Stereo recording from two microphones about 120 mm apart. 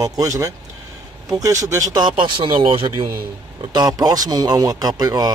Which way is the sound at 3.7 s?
35° right (ahead or behind).